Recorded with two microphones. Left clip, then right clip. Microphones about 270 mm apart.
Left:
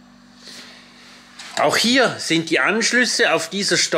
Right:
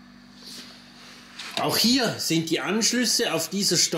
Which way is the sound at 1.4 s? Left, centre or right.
Centre.